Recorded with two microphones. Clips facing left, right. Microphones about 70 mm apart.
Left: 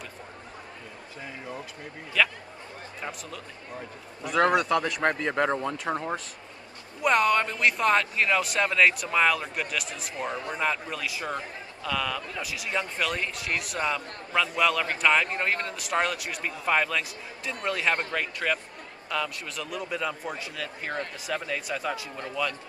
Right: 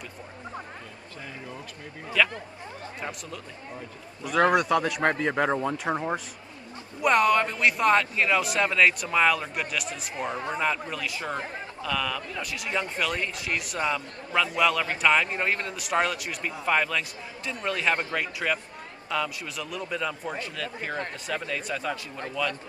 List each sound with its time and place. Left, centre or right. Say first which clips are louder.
2.2 s a man's voice: right 1 dB; centre